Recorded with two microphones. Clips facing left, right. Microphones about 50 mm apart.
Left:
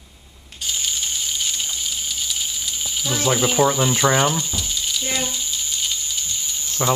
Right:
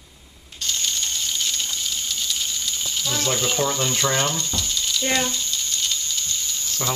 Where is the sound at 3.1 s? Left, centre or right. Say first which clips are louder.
Left 5 dB; centre.